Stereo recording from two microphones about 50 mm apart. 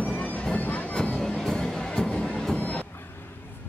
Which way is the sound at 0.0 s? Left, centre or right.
Left.